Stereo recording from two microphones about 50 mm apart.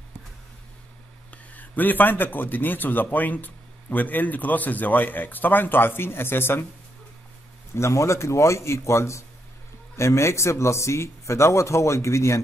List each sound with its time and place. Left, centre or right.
1.3 s a man's voice: left
7.7 s speech: left